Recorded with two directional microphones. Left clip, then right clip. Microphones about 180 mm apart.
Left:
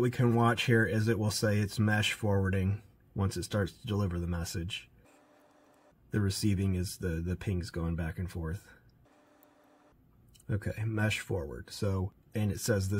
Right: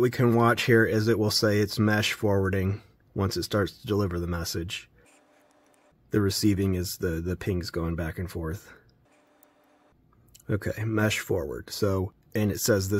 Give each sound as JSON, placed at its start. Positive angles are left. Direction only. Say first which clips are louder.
{"t": 0.0, "sound": "speech", "louder": "right 6 dB", "side_deg": -35}
{"t": 6.0, "sound": "speech", "louder": "right 9 dB", "side_deg": -35}
{"t": 10.4, "sound": "speech", "louder": "right 8 dB", "side_deg": -35}